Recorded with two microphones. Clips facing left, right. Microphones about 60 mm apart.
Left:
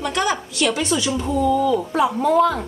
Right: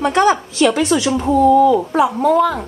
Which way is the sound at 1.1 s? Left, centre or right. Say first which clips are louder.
Right 9 dB; right.